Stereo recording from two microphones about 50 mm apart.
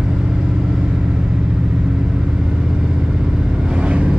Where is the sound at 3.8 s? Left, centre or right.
Right.